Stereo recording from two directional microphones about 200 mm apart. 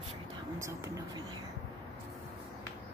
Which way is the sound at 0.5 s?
15° right (ahead or behind).